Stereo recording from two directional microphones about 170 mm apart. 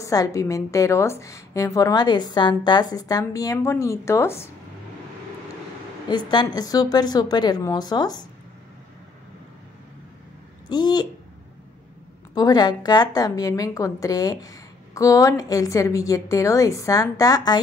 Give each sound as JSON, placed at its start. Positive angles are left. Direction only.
{"t": 0.0, "sound": "a woman's voice", "side_deg": 20}
{"t": 6.0, "sound": "a woman's voice", "side_deg": 25}
{"t": 10.7, "sound": "a woman's voice", "side_deg": 25}
{"t": 12.4, "sound": "a woman's voice", "side_deg": 25}